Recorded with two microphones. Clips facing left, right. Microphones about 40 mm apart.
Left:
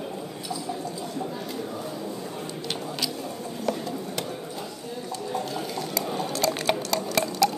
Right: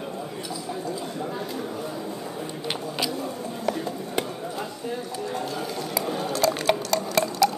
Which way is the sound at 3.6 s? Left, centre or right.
Centre.